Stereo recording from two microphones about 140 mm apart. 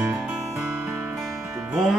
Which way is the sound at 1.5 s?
15° right (ahead or behind).